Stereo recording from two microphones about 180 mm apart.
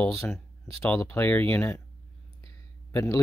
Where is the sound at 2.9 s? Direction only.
15° left (ahead or behind).